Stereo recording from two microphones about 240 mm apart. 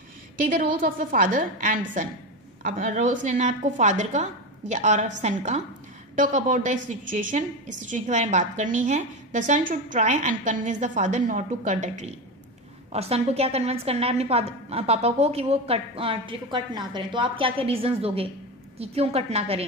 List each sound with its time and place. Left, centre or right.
0.5 s a woman's voice: right